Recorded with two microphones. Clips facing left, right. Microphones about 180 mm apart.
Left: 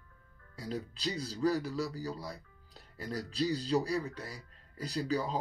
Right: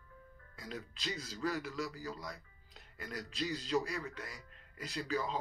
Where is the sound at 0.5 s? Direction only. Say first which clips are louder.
Left 7 dB; 35° left (ahead or behind).